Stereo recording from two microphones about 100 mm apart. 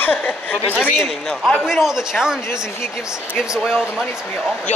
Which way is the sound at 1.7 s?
5° right (ahead or behind).